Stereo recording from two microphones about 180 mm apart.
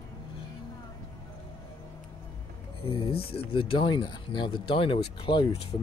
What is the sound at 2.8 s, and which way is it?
Speech, 30° left (ahead or behind).